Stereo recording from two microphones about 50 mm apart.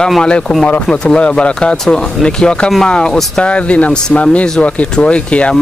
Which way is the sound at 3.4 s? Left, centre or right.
Left.